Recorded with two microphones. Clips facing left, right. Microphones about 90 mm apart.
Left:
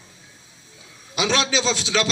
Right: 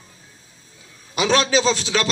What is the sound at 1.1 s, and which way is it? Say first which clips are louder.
Speech: right 4 dB; 40° right (ahead or behind).